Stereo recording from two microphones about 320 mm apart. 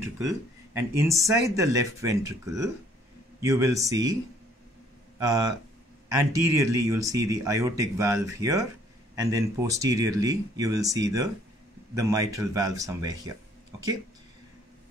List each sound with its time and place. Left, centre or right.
0.7 s speech: centre
5.2 s speech: centre